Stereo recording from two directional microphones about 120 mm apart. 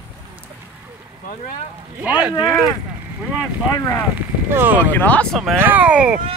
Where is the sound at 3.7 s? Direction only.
30° left (ahead or behind).